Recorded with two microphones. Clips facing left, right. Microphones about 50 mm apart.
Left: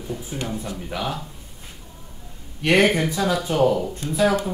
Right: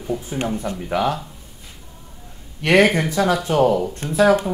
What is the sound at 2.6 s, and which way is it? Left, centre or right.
Speech, right.